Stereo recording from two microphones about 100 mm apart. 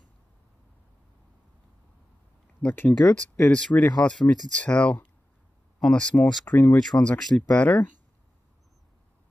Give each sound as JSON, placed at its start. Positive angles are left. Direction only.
{"t": 2.6, "sound": "speech", "side_deg": 15}
{"t": 6.5, "sound": "speech", "side_deg": 20}
{"t": 7.0, "sound": "speech", "side_deg": 10}